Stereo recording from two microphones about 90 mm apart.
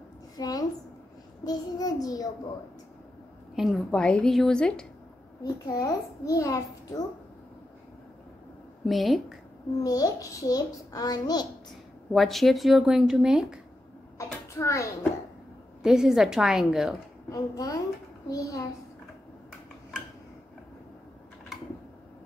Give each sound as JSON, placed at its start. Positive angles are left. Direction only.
{"t": 0.4, "sound": "a sound", "side_deg": 45}
{"t": 1.4, "sound": "a child's voice", "side_deg": 45}
{"t": 3.5, "sound": "a woman's voice", "side_deg": 0}
{"t": 5.4, "sound": "a child's voice", "side_deg": 45}
{"t": 8.8, "sound": "a woman's voice", "side_deg": 0}
{"t": 9.8, "sound": "a child's voice", "side_deg": 45}
{"t": 12.1, "sound": "speech", "side_deg": 0}
{"t": 14.1, "sound": "a sound", "side_deg": 35}
{"t": 15.8, "sound": "speech", "side_deg": -5}
{"t": 17.3, "sound": "a child's voice", "side_deg": 40}